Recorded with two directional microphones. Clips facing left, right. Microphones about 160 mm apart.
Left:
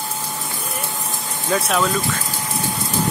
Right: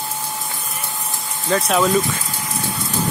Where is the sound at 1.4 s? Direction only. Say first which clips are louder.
Right 2 dB; 5° left (ahead or behind).